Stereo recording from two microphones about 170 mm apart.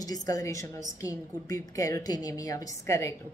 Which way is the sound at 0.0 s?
20° left (ahead or behind).